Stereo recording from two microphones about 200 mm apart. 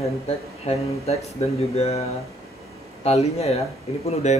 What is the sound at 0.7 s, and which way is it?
Speech, 30° left (ahead or behind).